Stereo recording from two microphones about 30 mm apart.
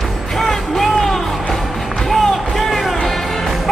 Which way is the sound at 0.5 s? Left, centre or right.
Centre.